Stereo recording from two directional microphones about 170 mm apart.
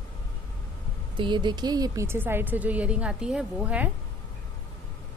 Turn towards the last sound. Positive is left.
turn(degrees=-10)  # may be behind; listen again after turning